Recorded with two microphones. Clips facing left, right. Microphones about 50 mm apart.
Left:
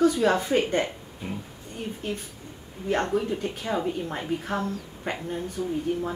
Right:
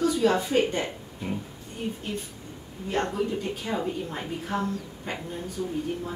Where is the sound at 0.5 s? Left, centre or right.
Left.